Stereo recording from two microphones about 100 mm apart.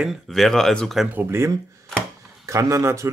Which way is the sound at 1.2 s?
25° right (ahead or behind).